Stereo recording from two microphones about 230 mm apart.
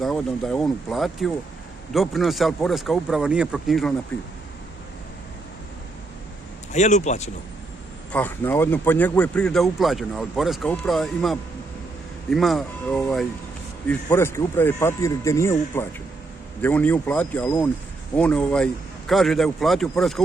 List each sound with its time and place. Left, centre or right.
0.0 s a man's voice: centre
6.7 s speech: left
8.1 s a man's voice: centre